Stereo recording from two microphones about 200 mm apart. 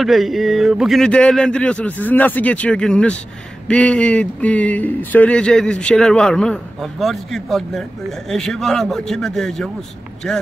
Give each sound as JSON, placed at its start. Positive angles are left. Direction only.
{"t": 0.0, "sound": "speech", "side_deg": 0}